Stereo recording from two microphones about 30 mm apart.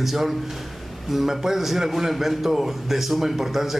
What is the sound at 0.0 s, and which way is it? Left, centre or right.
A man's voice, centre.